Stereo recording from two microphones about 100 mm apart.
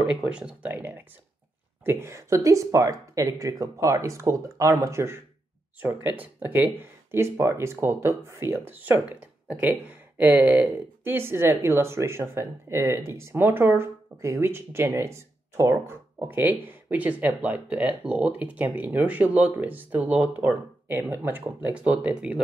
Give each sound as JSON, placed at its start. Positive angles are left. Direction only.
{"t": 0.0, "sound": "speech", "side_deg": -5}
{"t": 1.9, "sound": "speech", "side_deg": -25}